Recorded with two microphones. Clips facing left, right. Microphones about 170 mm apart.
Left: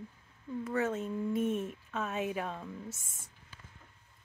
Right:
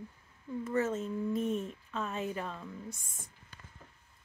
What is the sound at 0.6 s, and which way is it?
Speech, centre (ahead or behind).